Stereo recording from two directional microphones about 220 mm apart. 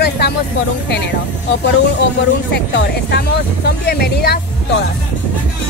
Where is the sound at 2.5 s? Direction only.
50° left (ahead or behind).